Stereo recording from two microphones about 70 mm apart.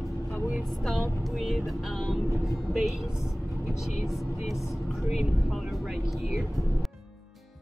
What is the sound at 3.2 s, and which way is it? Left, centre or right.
Vehicle, left.